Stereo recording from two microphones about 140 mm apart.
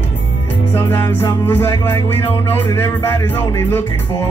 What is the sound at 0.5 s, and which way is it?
Music, 15° left (ahead or behind).